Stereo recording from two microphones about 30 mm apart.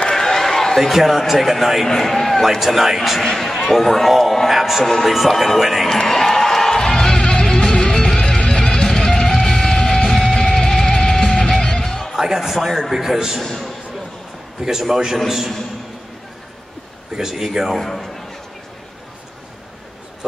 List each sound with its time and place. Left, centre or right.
0.1 s a sound: centre
0.7 s a man's voice: centre
2.4 s a man's voice: centre
3.2 s a man's voice: centre
4.5 s a sound: centre
4.8 s speech: centre
5.6 s a man's voice: centre
6.0 s music: centre
12.2 s speech: centre
13.4 s a man's voice: centre
14.6 s a man's voice: centre
17.1 s speech: centre
17.7 s a sound: centre